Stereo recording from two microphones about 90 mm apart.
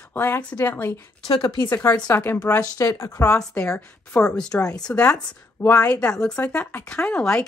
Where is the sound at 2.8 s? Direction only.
35° left (ahead or behind).